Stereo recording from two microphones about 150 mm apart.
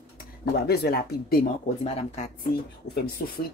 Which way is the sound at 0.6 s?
90° left.